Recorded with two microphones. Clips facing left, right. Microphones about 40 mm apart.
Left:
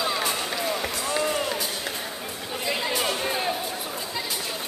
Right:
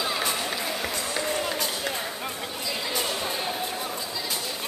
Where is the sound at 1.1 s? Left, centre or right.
Centre.